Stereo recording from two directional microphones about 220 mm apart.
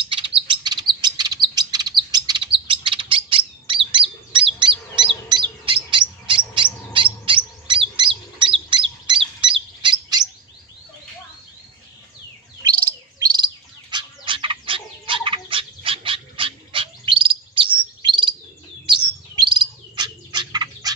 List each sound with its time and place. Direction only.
0.0 s chirp: 25° right (ahead or behind)
5.3 s bird: 20° right (ahead or behind)
5.9 s chirp: 20° right (ahead or behind)
7.2 s bird: 20° right (ahead or behind)
13.2 s bird: 20° right (ahead or behind)